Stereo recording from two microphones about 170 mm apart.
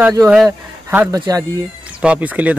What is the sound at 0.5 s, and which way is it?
Speech, 15° right (ahead or behind).